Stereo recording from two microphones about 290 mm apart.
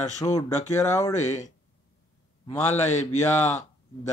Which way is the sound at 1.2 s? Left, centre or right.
Left.